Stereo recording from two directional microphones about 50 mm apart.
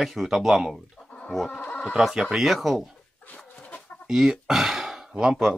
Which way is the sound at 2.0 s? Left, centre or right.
Centre.